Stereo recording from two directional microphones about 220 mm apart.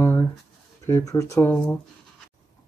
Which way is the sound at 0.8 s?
15° left (ahead or behind).